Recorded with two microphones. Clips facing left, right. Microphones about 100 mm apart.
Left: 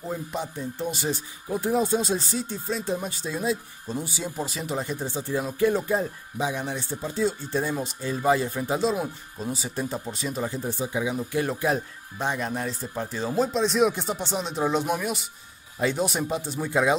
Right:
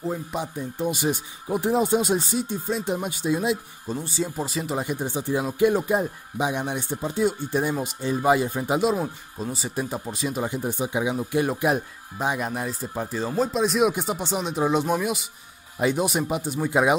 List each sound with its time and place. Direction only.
0.1 s speech: 10° right (ahead or behind)
1.6 s speech: 20° right (ahead or behind)
4.0 s speech: 5° left (ahead or behind)
4.8 s speech: 15° right (ahead or behind)
8.9 s speech: centre (ahead or behind)
10.4 s speech: 15° right (ahead or behind)